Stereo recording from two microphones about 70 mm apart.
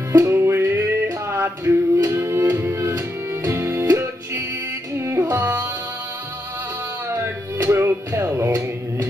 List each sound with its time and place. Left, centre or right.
0.2 s music: right
1.6 s music: right
4.9 s music: right
7.1 s music: right